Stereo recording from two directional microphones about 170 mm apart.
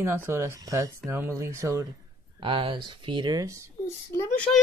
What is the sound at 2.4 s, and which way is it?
Speech, 30° right (ahead or behind).